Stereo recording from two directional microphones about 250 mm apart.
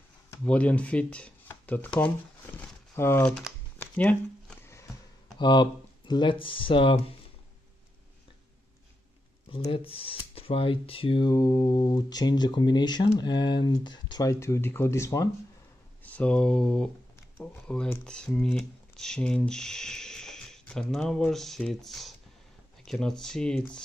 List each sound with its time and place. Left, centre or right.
0.3 s speech: centre
3.0 s shuffling cards: centre
5.4 s speech: centre
9.5 s speech: left; by 23.8 s centre